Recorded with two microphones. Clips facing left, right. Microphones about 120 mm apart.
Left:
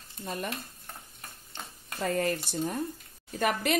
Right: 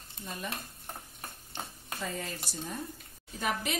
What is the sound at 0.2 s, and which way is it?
Stir, 60° left (ahead or behind).